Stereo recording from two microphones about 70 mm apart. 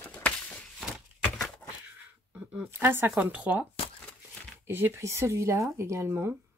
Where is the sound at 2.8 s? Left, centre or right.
Right.